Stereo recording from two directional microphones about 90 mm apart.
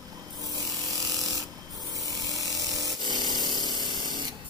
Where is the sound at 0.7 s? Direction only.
40° right (ahead or behind).